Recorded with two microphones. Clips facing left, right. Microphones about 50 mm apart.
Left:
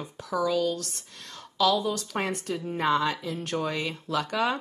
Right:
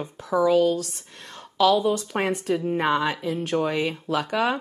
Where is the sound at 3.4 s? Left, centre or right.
Centre.